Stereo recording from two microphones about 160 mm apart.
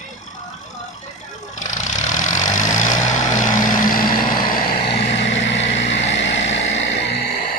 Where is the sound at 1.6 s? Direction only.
50° left (ahead or behind).